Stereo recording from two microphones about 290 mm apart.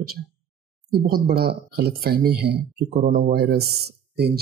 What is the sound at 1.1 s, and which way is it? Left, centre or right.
Speech, right.